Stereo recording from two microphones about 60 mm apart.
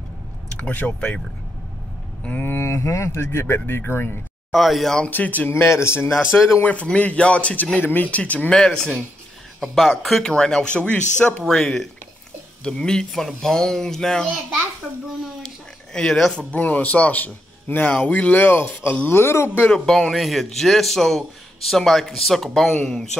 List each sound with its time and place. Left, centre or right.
0.6 s a man's voice: left
2.4 s speech: left
3.5 s speech: left
4.5 s speech: centre
5.1 s a man's voice: left
5.5 s speech: left
6.3 s a man's voice: left; by 14.2 s centre
15.4 s speech: centre
16.5 s a man's voice: left
17.9 s a man's voice: left
19.7 s speech: centre